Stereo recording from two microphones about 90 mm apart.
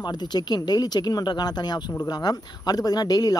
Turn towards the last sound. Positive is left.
turn(degrees=45)  # may be behind; listen again after turning